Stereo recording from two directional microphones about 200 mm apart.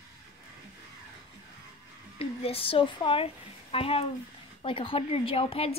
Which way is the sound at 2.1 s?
30° left (ahead or behind).